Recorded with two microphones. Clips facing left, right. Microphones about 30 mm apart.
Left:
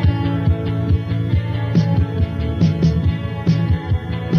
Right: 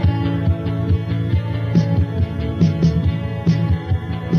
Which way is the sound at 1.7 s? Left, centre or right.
Centre.